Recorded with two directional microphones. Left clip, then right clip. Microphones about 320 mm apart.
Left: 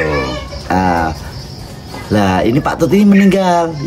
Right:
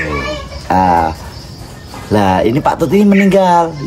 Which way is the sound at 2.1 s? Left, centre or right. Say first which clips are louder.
Right 2 dB; centre.